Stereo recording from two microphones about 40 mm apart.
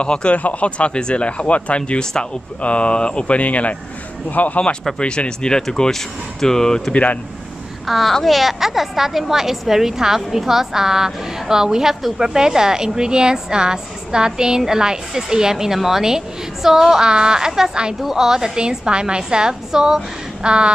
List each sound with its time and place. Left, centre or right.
0.0 s speech: left
5.6 s speech: centre
6.9 s speech: left
7.8 s a child's voice: centre
8.1 s speech: centre
8.4 s a woman's voice: centre
20.4 s speech: right